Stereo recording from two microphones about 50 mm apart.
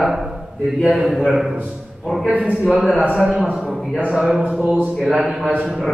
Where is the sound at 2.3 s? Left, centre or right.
Right.